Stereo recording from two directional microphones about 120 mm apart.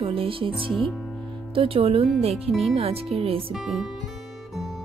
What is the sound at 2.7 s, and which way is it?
Speech, 60° right (ahead or behind).